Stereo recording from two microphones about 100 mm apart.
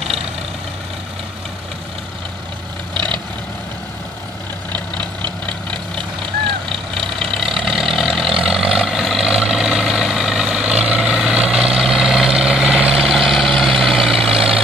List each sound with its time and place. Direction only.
2.9 s vehicle: 50° right (ahead or behind)
7.2 s vehicle: centre (ahead or behind)